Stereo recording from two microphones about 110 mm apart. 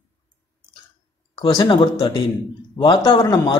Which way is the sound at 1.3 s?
40° left (ahead or behind).